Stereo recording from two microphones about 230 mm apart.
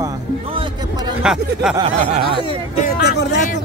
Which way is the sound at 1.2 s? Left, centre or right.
Centre.